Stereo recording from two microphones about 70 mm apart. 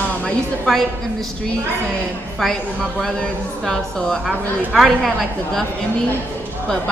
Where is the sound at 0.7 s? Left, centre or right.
Centre.